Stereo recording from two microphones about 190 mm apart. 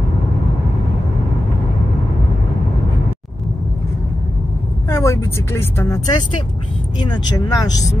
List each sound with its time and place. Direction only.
4.8 s speech: 15° left (ahead or behind)